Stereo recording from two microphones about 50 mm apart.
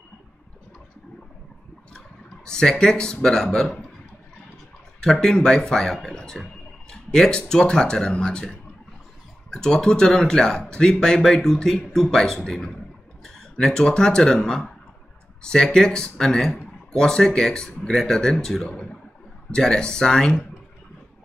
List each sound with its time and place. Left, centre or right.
2.0 s speech: centre
5.0 s speech: centre